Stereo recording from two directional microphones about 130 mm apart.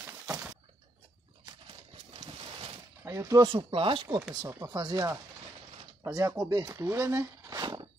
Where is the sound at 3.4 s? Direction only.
40° right (ahead or behind).